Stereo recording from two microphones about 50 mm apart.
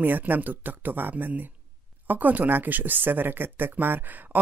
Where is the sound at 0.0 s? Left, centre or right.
Right.